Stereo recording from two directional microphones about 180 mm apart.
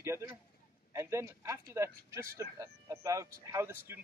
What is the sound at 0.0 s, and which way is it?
Speech, 15° right (ahead or behind).